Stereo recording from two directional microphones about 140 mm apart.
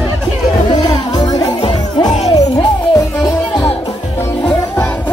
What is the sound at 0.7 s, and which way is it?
Music, 30° left (ahead or behind).